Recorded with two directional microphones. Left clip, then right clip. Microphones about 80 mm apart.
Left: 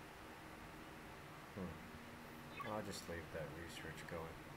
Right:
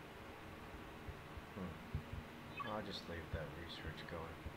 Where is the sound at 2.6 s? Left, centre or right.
Centre.